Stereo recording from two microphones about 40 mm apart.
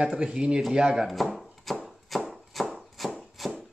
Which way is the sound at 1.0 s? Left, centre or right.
Centre.